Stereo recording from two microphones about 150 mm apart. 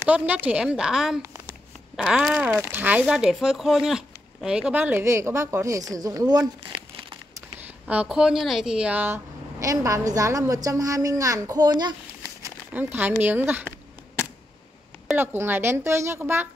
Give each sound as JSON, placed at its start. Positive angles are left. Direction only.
{"t": 0.0, "sound": "speech", "side_deg": -10}
{"t": 7.8, "sound": "speech", "side_deg": -5}
{"t": 12.7, "sound": "speech", "side_deg": -10}
{"t": 15.1, "sound": "speech", "side_deg": -15}